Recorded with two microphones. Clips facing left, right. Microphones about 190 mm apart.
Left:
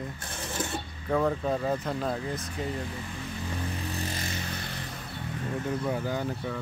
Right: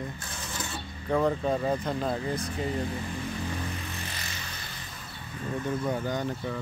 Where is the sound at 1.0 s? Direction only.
Centre (ahead or behind).